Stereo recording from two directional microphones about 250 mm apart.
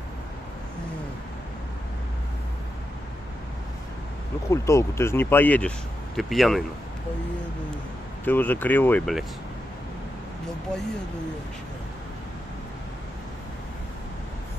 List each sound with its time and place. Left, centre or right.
4.5 s speech: centre
8.3 s speech: centre